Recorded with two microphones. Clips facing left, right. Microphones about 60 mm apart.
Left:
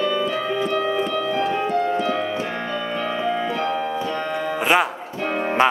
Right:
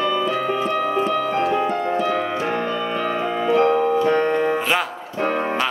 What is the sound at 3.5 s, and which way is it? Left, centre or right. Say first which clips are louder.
Music: right 7 dB; right.